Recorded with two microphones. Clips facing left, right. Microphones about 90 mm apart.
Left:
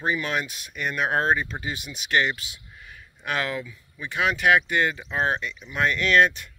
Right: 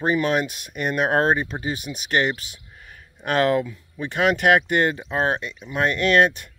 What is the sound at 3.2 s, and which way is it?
Speech, 45° right (ahead or behind).